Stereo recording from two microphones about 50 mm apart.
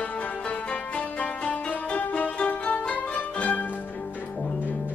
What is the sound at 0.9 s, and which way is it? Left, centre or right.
Music, left.